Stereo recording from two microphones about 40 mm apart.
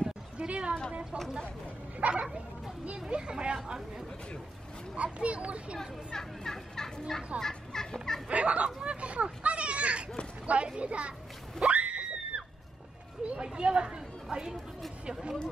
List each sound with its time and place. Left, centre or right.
0.4 s a sound: right
2.0 s speech: right
4.9 s a child's voice: right
5.8 s turkey: centre
8.3 s a child's voice: right
11.6 s screaming: right
13.3 s speech: right